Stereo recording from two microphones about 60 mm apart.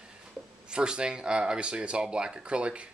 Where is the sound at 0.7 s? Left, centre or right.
Centre.